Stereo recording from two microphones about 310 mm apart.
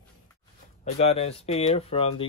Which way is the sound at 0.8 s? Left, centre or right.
Centre.